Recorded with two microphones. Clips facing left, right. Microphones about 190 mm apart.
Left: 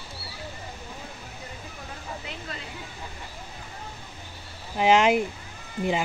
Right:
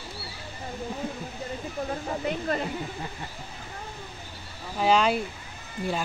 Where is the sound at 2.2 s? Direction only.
55° right (ahead or behind).